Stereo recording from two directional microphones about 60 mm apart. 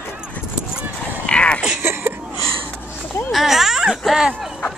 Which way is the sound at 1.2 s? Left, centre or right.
Centre.